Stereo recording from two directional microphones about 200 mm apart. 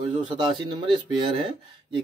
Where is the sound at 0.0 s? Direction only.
25° right (ahead or behind).